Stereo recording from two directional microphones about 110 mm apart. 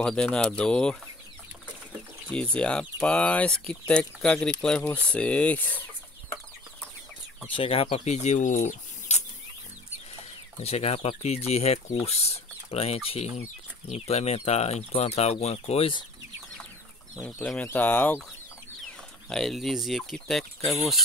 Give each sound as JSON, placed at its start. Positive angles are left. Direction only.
{"t": 0.0, "sound": "speech", "side_deg": 10}
{"t": 2.3, "sound": "speech", "side_deg": 10}
{"t": 7.5, "sound": "speech", "side_deg": 55}
{"t": 10.6, "sound": "speech", "side_deg": 70}
{"t": 17.6, "sound": "speech", "side_deg": 15}
{"t": 19.2, "sound": "speech", "side_deg": 5}